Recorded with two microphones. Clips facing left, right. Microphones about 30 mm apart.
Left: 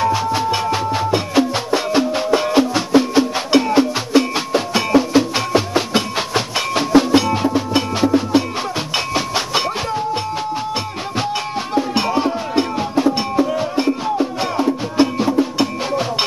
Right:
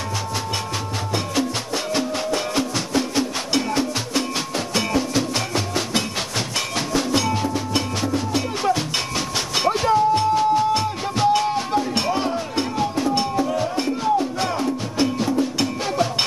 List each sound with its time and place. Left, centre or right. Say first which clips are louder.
0.0 s music: left 10 dB; left
9.9 s music: right 4 dB; centre
12.1 s music: left 4 dB; centre
12.5 s music: left 5 dB; centre